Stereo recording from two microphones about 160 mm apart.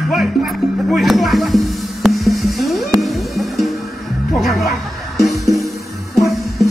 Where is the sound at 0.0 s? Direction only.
Centre (ahead or behind).